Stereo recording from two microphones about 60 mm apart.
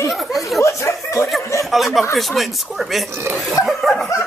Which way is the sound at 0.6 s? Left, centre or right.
Left.